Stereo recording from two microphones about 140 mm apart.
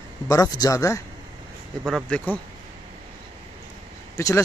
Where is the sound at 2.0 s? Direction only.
10° left (ahead or behind).